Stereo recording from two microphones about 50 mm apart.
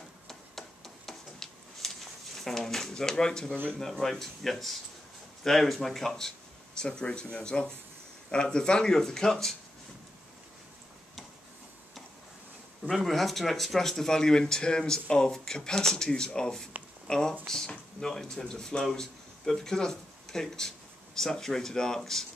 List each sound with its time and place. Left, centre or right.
0.3 s tick-tock: centre
3.8 s speech: centre
12.9 s speech: centre